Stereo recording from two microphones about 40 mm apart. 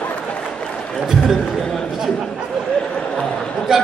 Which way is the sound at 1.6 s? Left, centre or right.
Centre.